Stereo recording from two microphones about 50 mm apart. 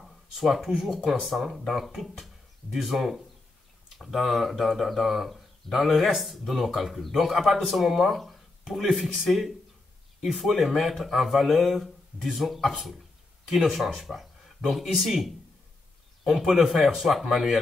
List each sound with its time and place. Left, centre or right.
0.0 s speech: centre